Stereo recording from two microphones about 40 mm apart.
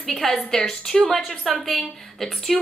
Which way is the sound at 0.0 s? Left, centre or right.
Centre.